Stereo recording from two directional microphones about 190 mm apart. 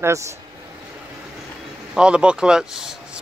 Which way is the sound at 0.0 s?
15° right (ahead or behind).